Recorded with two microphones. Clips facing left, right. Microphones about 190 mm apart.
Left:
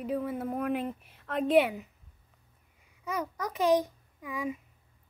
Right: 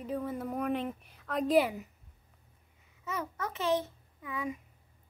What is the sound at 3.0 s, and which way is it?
A child's voice, 10° left (ahead or behind).